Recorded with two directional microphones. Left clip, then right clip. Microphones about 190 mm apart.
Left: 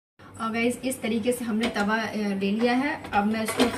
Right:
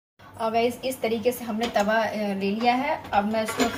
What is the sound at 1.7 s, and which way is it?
Speech, 25° right (ahead or behind).